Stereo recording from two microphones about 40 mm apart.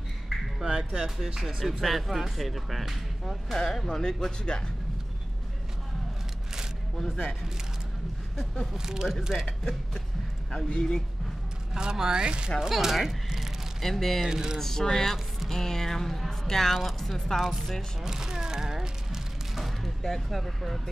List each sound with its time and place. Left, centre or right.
0.7 s speech: centre
3.5 s speech: centre
8.7 s speech: centre
10.5 s speech: centre
11.7 s speech: centre
12.5 s speech: centre
13.7 s speech: centre
14.2 s speech: centre
14.6 s speech: centre
18.0 s speech: centre
19.5 s a sound: centre